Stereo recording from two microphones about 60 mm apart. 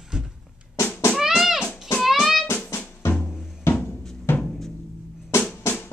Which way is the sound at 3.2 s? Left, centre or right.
Left.